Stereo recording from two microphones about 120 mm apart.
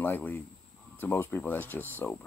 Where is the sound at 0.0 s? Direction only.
15° left (ahead or behind).